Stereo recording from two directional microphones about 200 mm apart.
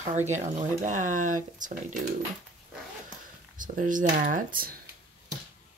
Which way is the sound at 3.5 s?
40° right (ahead or behind).